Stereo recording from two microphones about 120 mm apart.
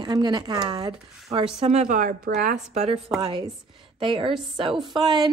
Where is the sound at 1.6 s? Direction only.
65° right (ahead or behind).